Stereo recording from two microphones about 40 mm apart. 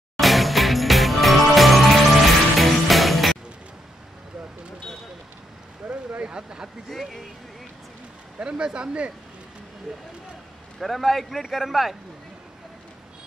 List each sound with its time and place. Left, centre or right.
0.2 s music: centre
5.8 s a sound: right
6.2 s speech: right
8.4 s speech: right
10.8 s speech: centre